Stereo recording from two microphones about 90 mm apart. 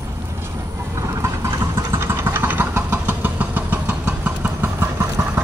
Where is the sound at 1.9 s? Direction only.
30° right (ahead or behind).